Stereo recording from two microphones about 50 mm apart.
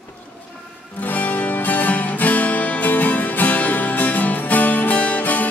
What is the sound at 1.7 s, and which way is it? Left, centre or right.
Music, left.